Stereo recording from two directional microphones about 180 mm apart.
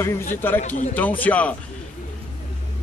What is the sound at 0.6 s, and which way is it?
Speech, 45° left (ahead or behind).